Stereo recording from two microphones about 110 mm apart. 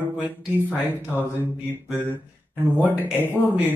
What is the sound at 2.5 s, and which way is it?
Speech, 15° right (ahead or behind).